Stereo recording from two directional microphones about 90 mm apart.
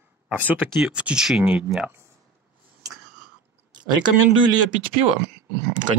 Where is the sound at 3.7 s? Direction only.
55° right (ahead or behind).